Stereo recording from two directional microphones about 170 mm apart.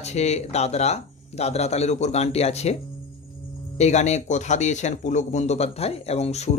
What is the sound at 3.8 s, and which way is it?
Speech, 40° left (ahead or behind).